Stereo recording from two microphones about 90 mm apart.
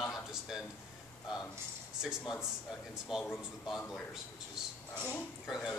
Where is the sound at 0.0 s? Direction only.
5° right (ahead or behind).